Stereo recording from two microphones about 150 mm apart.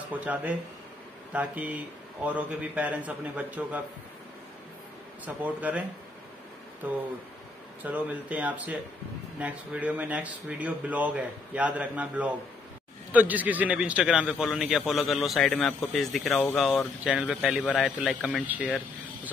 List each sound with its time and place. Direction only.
0.1 s speech: 10° right (ahead or behind)
5.2 s speech: 10° right (ahead or behind)
7.8 s a man's voice: 10° right (ahead or behind)